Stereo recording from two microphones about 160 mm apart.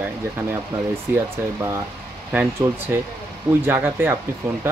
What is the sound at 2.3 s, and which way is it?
Speech, 15° right (ahead or behind).